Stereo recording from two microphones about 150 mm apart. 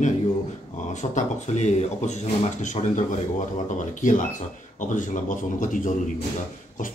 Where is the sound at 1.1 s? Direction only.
50° left (ahead or behind).